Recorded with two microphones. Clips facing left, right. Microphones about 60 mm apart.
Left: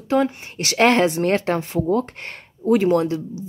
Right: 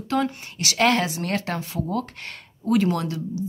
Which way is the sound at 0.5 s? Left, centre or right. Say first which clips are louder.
Left 4 dB; left.